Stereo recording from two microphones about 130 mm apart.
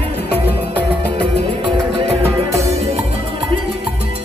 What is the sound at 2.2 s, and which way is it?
Music, 25° right (ahead or behind).